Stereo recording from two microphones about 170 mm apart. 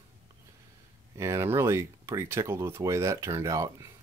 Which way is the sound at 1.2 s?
15° right (ahead or behind).